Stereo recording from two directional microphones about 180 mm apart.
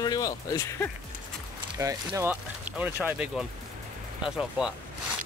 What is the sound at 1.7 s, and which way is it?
Speech, 15° right (ahead or behind).